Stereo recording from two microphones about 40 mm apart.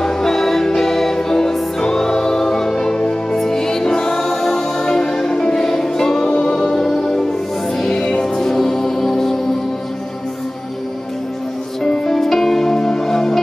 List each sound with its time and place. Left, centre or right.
0.0 s music: centre
11.8 s music: centre